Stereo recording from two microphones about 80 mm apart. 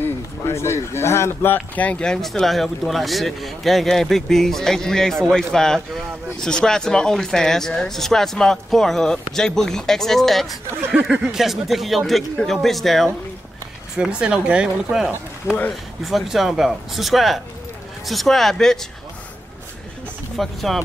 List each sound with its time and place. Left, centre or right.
0.0 s speech: left; by 2.1 s centre
2.2 s speech: centre
13.9 s speech: centre
20.3 s speech: centre